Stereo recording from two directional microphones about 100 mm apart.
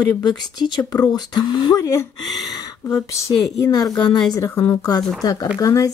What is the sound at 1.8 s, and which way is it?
Speech, 35° left (ahead or behind).